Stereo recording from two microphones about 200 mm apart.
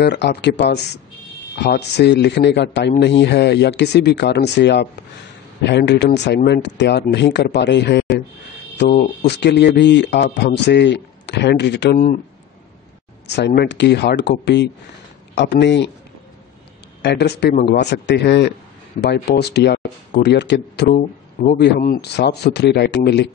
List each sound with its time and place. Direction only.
0.0 s a man's voice: 55° left (ahead or behind)
13.5 s a man's voice: 55° left (ahead or behind)
17.0 s a man's voice: 55° left (ahead or behind)
20.9 s a man's voice: 45° left (ahead or behind); by 23.3 s 60° left (ahead or behind)